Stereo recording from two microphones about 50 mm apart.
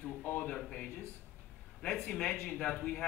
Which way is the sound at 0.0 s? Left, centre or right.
Left.